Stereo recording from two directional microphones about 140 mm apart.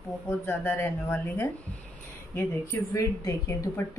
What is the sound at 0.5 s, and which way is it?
Speech, 15° left (ahead or behind).